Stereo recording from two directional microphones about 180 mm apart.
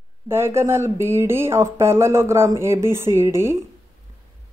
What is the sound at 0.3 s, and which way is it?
Speech, 15° right (ahead or behind).